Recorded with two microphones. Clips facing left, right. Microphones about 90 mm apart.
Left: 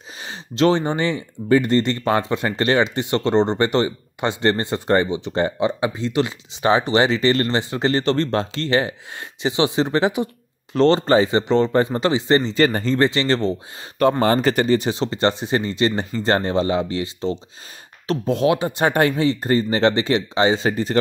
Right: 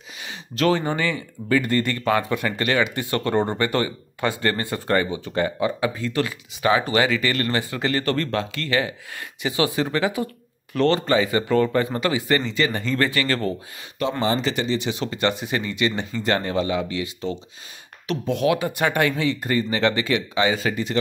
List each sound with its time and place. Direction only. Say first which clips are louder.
0.2 s speech: left 4 dB; 30° left (ahead or behind)
12.6 s speech: left 5 dB; 40° left (ahead or behind)
12.9 s speech: left 4 dB; 25° left (ahead or behind)
14.2 s speech: left 5 dB; 50° left (ahead or behind)
15.0 s speech: left 3 dB; 30° left (ahead or behind)